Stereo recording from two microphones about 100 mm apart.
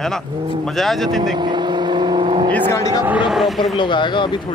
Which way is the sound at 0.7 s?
Centre (ahead or behind).